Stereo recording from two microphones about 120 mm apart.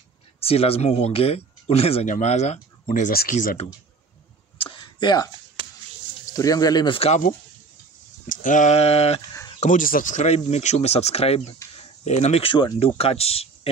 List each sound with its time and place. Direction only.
0.4 s speech: 55° left (ahead or behind)
2.0 s speech: 80° left
4.6 s a sound: 40° left (ahead or behind)
5.6 s a sound: 40° right (ahead or behind)
6.2 s speech: 30° left (ahead or behind)
7.0 s speech: 80° left
8.3 s speech: 90° left; by 9.2 s 60° left (ahead or behind)
9.6 s speech: 90° left; by 11.5 s 55° left (ahead or behind)
12.0 s speech: 70° left (ahead or behind)